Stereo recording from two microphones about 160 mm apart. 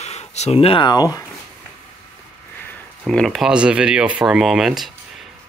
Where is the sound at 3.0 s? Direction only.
Centre (ahead or behind).